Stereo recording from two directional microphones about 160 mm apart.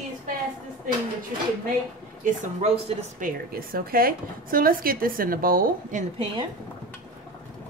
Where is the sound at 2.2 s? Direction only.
55° right (ahead or behind).